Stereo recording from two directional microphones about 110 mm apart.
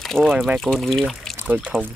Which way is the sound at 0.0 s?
Centre (ahead or behind).